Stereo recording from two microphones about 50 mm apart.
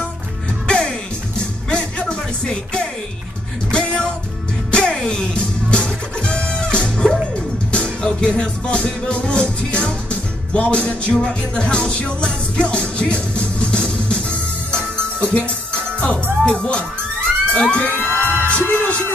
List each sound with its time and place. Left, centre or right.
0.7 s music: centre
17.5 s a sound: left
18.2 s music: right
18.7 s music: left